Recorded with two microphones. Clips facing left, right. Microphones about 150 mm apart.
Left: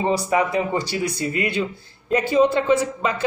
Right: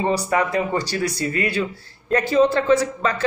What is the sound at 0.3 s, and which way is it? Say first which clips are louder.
A woman's voice: even; 15° left (ahead or behind).